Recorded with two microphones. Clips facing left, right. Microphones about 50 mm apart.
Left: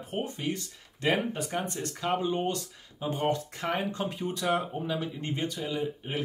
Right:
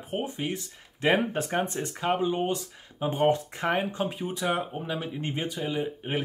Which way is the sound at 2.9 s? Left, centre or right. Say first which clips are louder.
Right 5 dB; right.